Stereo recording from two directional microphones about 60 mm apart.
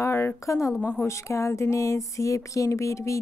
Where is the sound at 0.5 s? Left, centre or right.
Left.